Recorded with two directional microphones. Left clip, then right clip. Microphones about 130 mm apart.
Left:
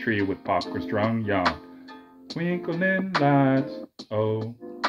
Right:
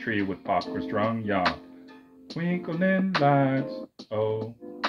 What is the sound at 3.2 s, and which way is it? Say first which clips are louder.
Speech: left 1 dB; 60° left (ahead or behind).